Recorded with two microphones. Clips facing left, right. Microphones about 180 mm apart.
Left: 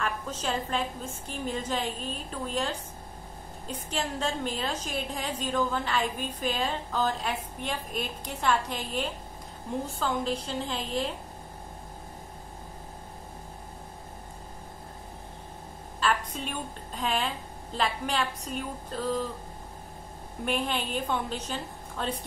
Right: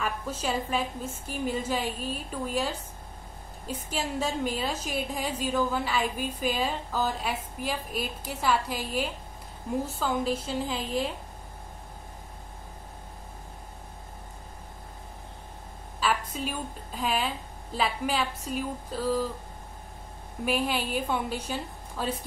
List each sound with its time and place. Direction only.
0.0 s a woman's voice: 10° right (ahead or behind)
16.0 s a woman's voice: 5° right (ahead or behind)
20.4 s a woman's voice: 5° right (ahead or behind)